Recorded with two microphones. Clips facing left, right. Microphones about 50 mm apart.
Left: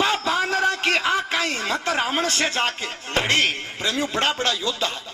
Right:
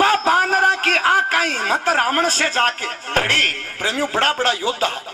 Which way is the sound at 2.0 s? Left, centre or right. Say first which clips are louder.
Right 6 dB; right.